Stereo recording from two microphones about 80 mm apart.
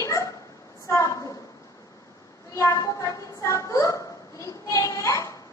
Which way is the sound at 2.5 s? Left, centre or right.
Left.